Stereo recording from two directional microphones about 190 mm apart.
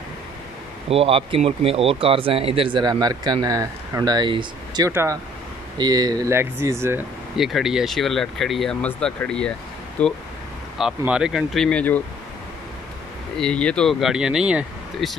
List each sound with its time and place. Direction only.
0.8 s speech: 30° right (ahead or behind); by 7.1 s 15° right (ahead or behind)
7.3 s speech: centre (ahead or behind)
10.8 s speech: 5° right (ahead or behind)
13.4 s speech: 5° left (ahead or behind)